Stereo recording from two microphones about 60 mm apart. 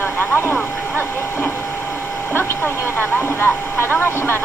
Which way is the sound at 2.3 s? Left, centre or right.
Left.